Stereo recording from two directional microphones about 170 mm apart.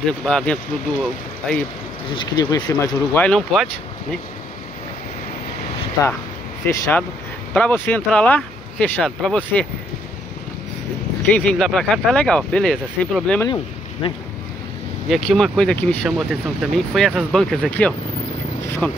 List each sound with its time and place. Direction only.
0.2 s speech: 5° left (ahead or behind)
2.1 s speech: 20° left (ahead or behind); by 3.6 s 5° left (ahead or behind)
6.6 s speech: 10° left (ahead or behind)
11.3 s speech: 5° left (ahead or behind)
14.0 s speech: 30° left (ahead or behind)
15.0 s speech: centre (ahead or behind)